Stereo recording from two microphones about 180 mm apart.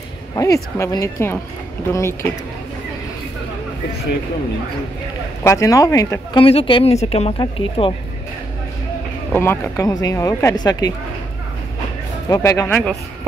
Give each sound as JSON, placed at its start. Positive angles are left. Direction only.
{"t": 0.4, "sound": "speech", "side_deg": 20}
{"t": 5.4, "sound": "speech", "side_deg": 15}
{"t": 6.4, "sound": "speech", "side_deg": 30}
{"t": 9.3, "sound": "speech", "side_deg": 15}
{"t": 12.3, "sound": "speech", "side_deg": 15}